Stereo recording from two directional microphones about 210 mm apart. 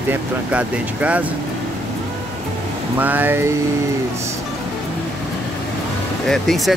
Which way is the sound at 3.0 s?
10° right (ahead or behind).